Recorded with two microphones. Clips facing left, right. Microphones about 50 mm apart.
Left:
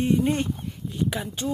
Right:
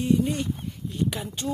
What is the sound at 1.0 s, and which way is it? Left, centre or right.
Speech, centre.